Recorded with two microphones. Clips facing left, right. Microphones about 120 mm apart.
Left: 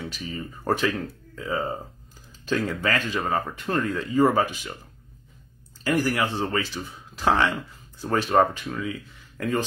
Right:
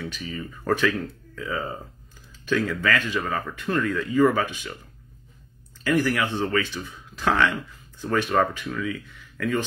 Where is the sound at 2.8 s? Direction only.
15° left (ahead or behind).